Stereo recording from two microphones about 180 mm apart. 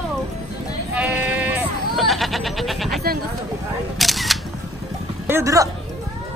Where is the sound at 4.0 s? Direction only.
Centre (ahead or behind).